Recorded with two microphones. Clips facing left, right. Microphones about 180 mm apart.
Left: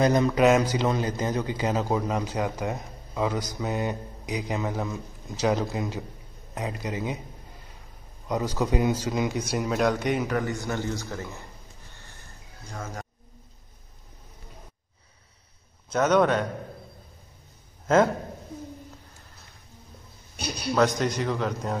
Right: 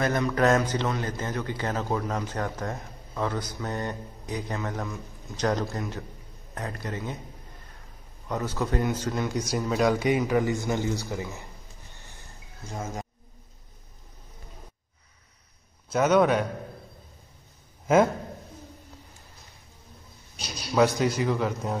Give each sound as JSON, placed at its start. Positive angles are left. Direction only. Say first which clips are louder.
{"t": 0.0, "sound": "speech", "louder": "left 4 dB", "side_deg": 20}
{"t": 8.3, "sound": "speech", "louder": "left 3 dB", "side_deg": 15}
{"t": 9.3, "sound": "speech", "louder": "even", "side_deg": 0}
{"t": 11.9, "sound": "a sound", "louder": "even", "side_deg": -15}
{"t": 15.9, "sound": "speech", "louder": "even", "side_deg": -5}
{"t": 17.8, "sound": "a man's voice", "louder": "even", "side_deg": -10}
{"t": 20.3, "sound": "a man's voice", "louder": "left 8 dB", "side_deg": 60}
{"t": 20.7, "sound": "speech", "louder": "right 1 dB", "side_deg": -5}